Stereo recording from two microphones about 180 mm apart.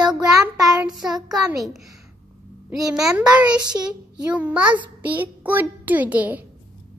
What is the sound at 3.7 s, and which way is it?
Child singing, 25° right (ahead or behind).